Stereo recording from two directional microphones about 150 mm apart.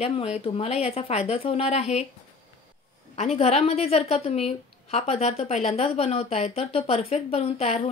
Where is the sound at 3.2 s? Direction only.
45° left (ahead or behind).